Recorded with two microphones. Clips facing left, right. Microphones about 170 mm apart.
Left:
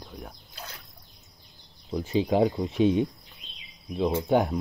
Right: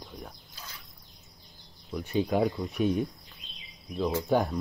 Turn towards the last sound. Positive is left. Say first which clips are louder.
# left 3 dB
turn(degrees=15)  # may be behind; listen again after turning